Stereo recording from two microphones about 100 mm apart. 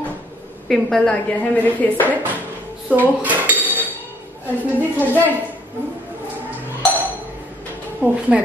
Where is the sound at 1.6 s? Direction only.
15° left (ahead or behind).